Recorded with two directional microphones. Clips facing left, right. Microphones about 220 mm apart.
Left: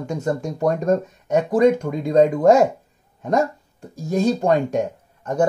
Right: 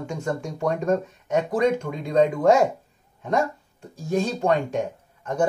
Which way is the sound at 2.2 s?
40° left (ahead or behind).